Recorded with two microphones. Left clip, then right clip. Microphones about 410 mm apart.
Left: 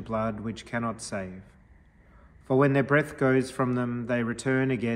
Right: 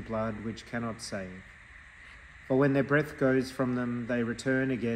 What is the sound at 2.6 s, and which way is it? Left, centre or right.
A man's voice, centre.